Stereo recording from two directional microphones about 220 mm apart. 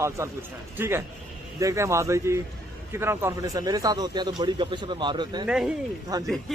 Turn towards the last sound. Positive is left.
turn(degrees=-15)  # may be behind; listen again after turning